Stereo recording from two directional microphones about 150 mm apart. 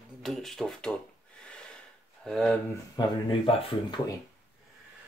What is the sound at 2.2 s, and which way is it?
Speech, 5° left (ahead or behind).